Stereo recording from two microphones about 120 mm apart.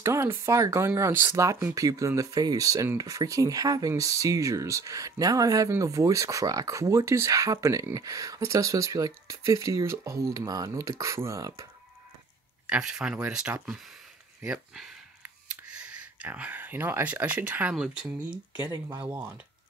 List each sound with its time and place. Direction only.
0.0 s speech: 20° right (ahead or behind)
12.6 s speech: 10° right (ahead or behind)